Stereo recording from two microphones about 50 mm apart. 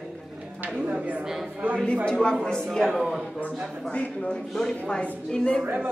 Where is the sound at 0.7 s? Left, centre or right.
Right.